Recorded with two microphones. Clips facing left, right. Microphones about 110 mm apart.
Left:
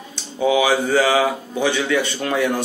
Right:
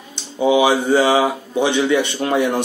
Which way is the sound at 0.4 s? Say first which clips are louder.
Right 2 dB; 20° right (ahead or behind).